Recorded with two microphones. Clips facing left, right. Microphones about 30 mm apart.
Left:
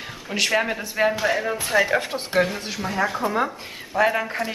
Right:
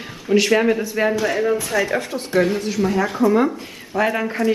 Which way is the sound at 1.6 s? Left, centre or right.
Centre.